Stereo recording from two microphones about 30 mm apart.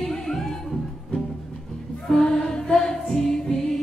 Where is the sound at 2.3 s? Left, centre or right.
Left.